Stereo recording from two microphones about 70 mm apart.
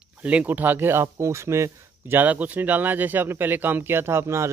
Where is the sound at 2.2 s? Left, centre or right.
Right.